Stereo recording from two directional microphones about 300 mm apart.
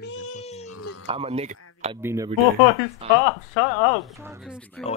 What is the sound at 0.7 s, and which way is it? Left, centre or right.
Cat, left.